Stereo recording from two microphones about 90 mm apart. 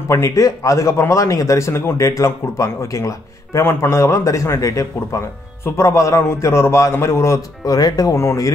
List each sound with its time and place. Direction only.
0.1 s a man's voice: 35° left (ahead or behind)